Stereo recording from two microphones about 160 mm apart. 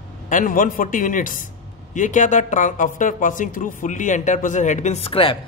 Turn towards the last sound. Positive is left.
turn(degrees=35)  # may be behind; listen again after turning